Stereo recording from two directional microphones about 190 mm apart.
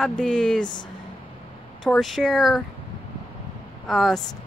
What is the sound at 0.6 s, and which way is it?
Speech, 25° left (ahead or behind).